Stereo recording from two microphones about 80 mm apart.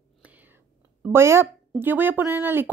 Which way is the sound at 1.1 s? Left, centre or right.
Right.